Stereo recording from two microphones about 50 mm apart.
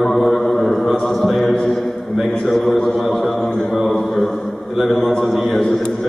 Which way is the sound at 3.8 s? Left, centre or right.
Centre.